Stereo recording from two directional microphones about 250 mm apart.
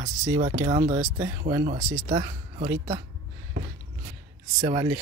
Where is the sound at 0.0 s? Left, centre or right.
Centre.